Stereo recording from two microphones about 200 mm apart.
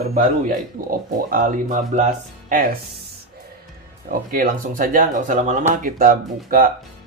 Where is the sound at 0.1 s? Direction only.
45° right (ahead or behind).